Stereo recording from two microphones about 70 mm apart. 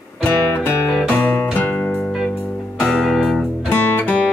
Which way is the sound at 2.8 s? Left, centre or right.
Centre.